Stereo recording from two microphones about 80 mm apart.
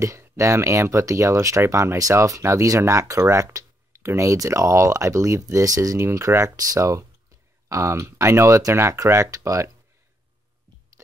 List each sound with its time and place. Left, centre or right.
0.4 s speech: right